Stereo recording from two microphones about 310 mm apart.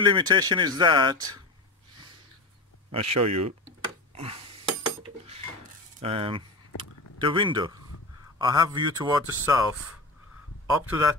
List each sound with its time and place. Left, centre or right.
0.0 s speech: centre
2.9 s speech: centre
3.2 s speech: right
3.6 s a sound: centre
5.9 s a sound: centre
8.4 s speech: centre